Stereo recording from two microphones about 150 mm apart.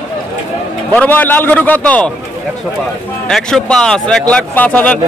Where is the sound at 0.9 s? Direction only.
10° left (ahead or behind).